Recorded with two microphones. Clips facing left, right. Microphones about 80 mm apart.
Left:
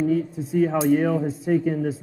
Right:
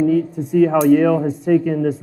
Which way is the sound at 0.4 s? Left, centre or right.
Right.